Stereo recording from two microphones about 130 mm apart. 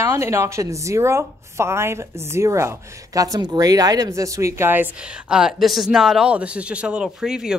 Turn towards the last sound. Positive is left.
turn(degrees=-5)  # may be behind; listen again after turning